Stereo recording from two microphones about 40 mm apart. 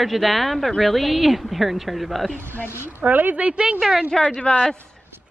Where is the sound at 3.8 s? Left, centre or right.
Centre.